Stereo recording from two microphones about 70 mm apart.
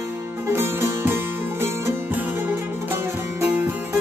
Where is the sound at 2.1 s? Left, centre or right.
Right.